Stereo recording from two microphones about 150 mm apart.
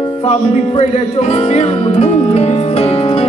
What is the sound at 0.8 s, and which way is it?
Music, 40° left (ahead or behind).